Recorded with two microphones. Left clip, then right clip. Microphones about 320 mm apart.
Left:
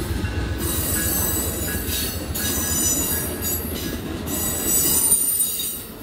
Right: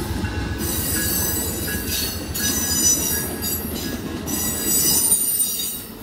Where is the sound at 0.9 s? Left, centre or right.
Centre.